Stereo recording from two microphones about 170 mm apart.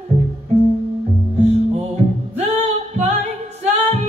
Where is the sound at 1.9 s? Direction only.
40° right (ahead or behind).